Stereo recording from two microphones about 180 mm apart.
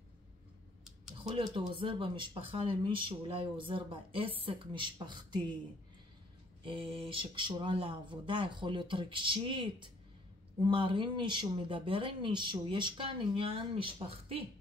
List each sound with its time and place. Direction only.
1.2 s speech: 25° right (ahead or behind)
6.6 s speech: 30° right (ahead or behind)